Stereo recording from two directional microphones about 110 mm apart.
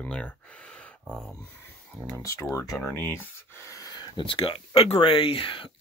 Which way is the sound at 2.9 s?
20° left (ahead or behind).